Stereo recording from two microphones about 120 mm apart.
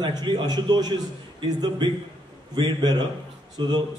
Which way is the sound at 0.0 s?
40° right (ahead or behind).